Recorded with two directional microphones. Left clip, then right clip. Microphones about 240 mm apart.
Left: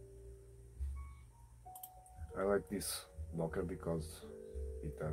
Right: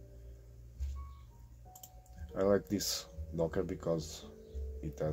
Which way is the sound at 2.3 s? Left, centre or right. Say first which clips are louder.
Right 5 dB; right.